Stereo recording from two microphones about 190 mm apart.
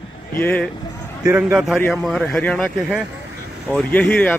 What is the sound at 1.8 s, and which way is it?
Speech, centre (ahead or behind).